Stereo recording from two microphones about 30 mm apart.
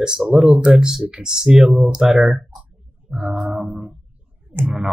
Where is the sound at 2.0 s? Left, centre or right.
Right.